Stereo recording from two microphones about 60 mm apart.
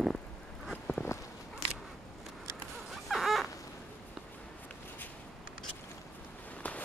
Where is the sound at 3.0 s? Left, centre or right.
Centre.